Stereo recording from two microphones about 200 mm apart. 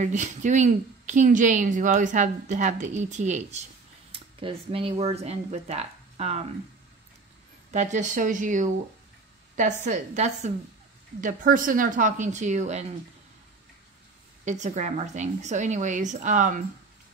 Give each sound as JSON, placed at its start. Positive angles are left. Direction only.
{"t": 0.0, "sound": "speech", "side_deg": -35}
{"t": 7.7, "sound": "speech", "side_deg": -35}
{"t": 14.4, "sound": "speech", "side_deg": -35}